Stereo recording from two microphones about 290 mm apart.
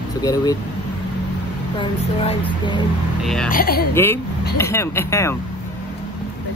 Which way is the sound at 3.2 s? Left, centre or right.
Centre.